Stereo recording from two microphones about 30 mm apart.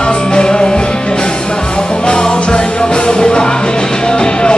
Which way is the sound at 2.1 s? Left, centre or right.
Left.